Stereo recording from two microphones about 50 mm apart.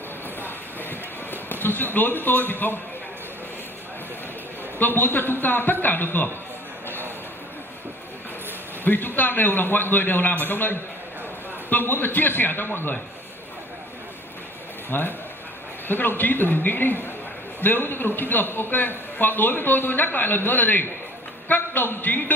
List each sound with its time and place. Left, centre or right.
0.4 s a sound: left
4.7 s a man's voice: left
8.8 s a man's voice: left
14.9 s a man's voice: left